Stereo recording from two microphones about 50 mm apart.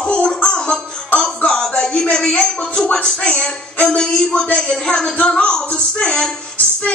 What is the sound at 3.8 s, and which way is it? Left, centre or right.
Speech, centre.